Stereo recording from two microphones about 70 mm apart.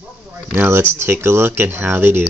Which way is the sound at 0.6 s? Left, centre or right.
Right.